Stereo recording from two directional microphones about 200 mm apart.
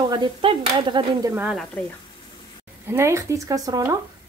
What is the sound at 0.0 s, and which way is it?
Speech, 20° right (ahead or behind).